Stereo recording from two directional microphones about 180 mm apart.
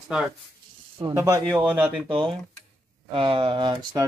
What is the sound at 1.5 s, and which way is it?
Speech, 10° right (ahead or behind).